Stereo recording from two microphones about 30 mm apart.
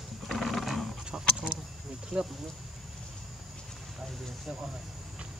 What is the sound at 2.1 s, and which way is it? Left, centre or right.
Speech, right.